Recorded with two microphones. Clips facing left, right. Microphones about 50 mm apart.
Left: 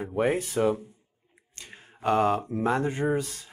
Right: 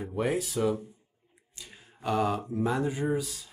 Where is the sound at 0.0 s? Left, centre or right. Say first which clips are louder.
Left 3 dB; left.